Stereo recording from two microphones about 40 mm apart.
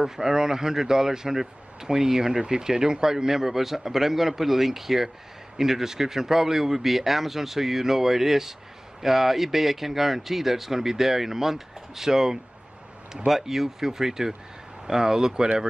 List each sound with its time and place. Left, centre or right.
0.0 s speech: centre